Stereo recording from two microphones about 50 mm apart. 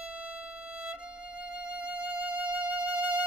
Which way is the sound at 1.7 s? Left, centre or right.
Right.